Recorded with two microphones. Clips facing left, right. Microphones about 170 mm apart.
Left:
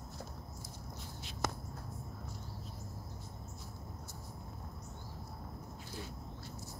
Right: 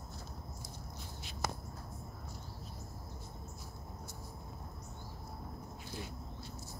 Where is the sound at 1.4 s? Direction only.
5° right (ahead or behind).